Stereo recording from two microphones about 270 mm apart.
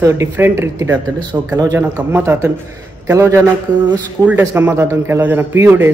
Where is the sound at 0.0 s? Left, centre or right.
Centre.